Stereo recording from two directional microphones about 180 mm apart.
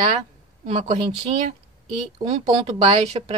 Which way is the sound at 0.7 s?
40° right (ahead or behind).